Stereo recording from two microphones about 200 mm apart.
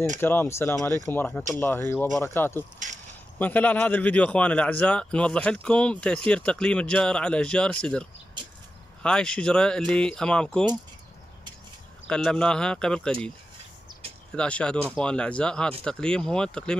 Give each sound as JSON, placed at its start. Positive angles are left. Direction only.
{"t": 0.2, "sound": "speech", "side_deg": 10}
{"t": 2.8, "sound": "speech", "side_deg": -40}
{"t": 3.3, "sound": "speech", "side_deg": 10}
{"t": 12.1, "sound": "speech", "side_deg": 5}
{"t": 14.3, "sound": "speech", "side_deg": 5}